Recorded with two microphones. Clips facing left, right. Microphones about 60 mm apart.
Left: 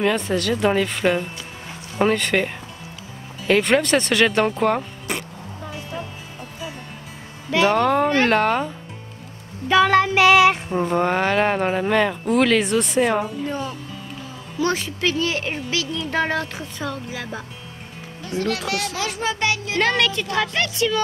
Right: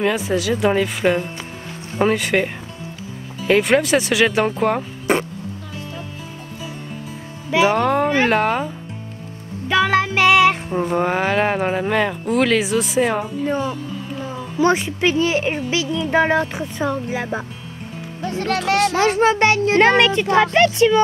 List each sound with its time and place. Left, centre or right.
0.0 s speech: centre
5.1 s a sound: right
7.5 s speech: centre
13.5 s a child's voice: right